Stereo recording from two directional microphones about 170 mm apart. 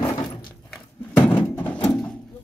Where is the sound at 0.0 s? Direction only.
25° left (ahead or behind).